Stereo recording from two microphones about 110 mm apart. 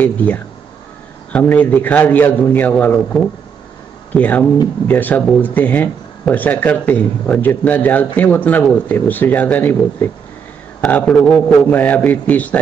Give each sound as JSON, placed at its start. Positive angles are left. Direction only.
{"t": 0.0, "sound": "speech", "side_deg": 15}